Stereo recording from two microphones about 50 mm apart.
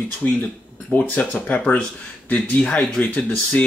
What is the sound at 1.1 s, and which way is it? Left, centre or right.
Speech, left.